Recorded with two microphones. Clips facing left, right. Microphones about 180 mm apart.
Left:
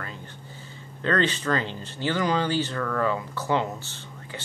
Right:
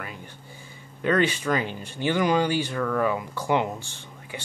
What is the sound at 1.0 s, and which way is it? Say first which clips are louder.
Speech: right 2 dB; 10° right (ahead or behind).